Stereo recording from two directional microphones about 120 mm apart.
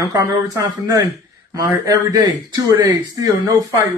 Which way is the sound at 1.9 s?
30° right (ahead or behind).